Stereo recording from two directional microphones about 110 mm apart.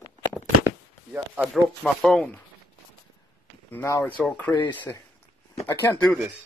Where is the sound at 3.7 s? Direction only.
25° left (ahead or behind).